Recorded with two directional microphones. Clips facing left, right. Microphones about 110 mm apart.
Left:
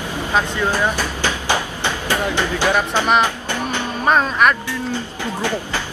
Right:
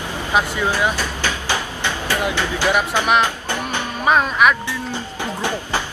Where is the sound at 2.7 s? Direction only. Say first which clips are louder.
Left 1 dB; 15° right (ahead or behind).